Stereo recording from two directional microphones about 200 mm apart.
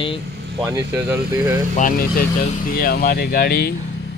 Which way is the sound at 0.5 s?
15° right (ahead or behind).